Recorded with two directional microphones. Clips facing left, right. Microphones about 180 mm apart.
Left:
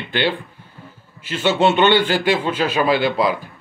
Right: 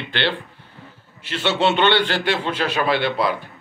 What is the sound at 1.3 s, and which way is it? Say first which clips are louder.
A man's voice: left 3 dB; centre (ahead or behind).